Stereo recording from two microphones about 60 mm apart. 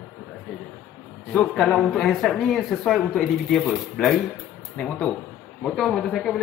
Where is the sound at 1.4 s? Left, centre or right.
Centre.